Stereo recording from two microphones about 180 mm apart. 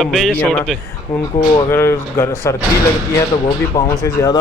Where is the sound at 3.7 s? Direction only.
20° left (ahead or behind).